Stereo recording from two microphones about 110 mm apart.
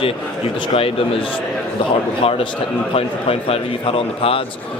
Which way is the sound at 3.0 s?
60° left (ahead or behind).